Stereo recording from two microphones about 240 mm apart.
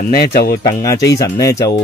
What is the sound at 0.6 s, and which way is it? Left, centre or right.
Speech, centre.